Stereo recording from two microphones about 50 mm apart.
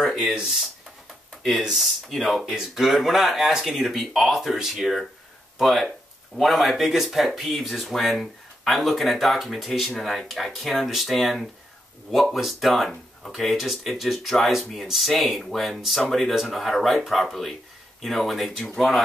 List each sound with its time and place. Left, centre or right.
0.2 s speech: centre
1.6 s speech: centre
2.0 s speech: centre
2.4 s speech: centre